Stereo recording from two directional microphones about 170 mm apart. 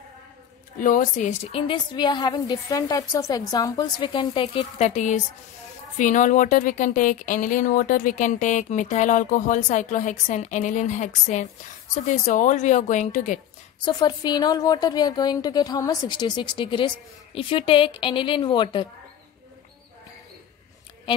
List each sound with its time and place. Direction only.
0.7 s a woman's voice: 50° left (ahead or behind); by 4.6 s 30° left (ahead or behind)
4.7 s speech: 40° left (ahead or behind)
13.8 s a woman's voice: 25° left (ahead or behind)